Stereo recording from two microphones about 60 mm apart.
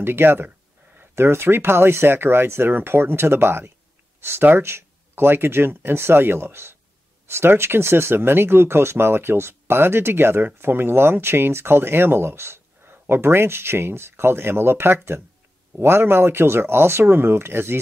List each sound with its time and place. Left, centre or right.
0.0 s speech: right